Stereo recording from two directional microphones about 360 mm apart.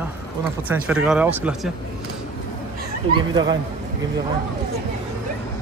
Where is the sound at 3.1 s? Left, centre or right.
Centre.